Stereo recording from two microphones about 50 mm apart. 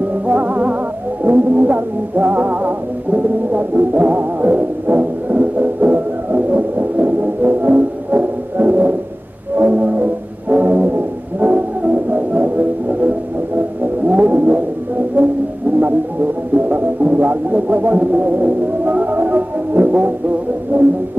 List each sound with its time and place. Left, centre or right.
0.3 s music: right
10.5 s brass instrument: right
14.0 s vehicle: right
15.2 s music: right
16.5 s music: right